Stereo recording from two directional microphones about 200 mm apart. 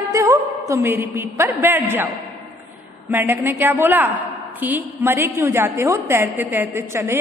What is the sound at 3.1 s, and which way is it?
A woman's voice, 10° right (ahead or behind).